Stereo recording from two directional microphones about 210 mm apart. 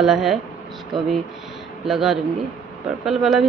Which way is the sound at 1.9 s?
Centre (ahead or behind).